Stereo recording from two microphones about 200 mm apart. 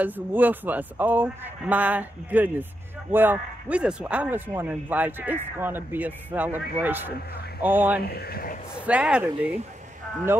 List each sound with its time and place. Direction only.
0.0 s a man's voice: 10° right (ahead or behind)
8.0 s speech: 50° left (ahead or behind)
8.7 s speech: 5° right (ahead or behind)